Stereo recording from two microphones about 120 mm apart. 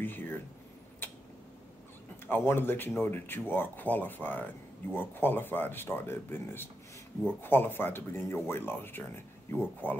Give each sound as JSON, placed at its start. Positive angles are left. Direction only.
{"t": 0.0, "sound": "speech", "side_deg": 15}
{"t": 1.0, "sound": "a sound", "side_deg": 15}
{"t": 2.2, "sound": "speech", "side_deg": 15}